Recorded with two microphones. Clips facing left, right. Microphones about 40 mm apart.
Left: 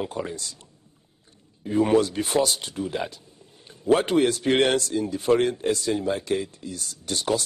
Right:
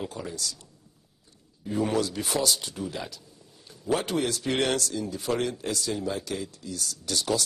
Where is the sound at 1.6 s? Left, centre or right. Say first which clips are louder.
Left 6 dB; left.